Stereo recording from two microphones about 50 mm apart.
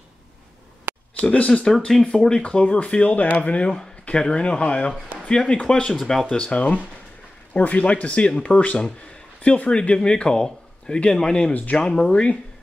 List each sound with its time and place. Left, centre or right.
0.9 s a sound: right
1.2 s speech: left
4.1 s speech: centre
5.9 s speech: centre
6.2 s speech: left